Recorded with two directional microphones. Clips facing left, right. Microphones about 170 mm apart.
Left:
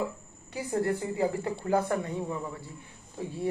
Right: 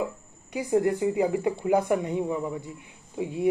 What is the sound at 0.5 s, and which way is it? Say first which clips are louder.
Speech: right 5 dB; 15° right (ahead or behind).